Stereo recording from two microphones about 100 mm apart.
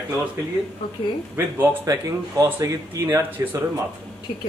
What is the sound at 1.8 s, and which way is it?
Speech, 35° right (ahead or behind).